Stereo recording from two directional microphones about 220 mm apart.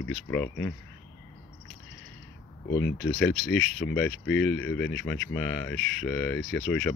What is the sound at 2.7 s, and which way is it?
Speech, 60° left (ahead or behind).